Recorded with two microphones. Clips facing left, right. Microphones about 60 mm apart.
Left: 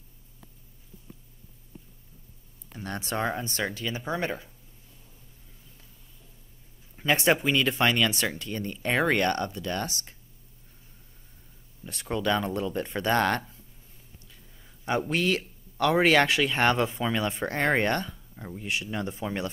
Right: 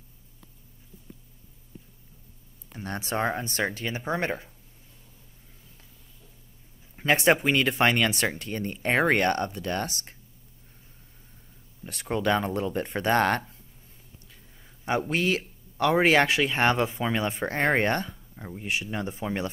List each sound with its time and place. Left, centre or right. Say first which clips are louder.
2.7 s a sound: right 1 dB; right
3.1 s speech: right 2 dB; right
7.0 s a man's voice: right 2 dB; right
11.8 s speech: right 2 dB; right
14.6 s speech: right 1 dB; right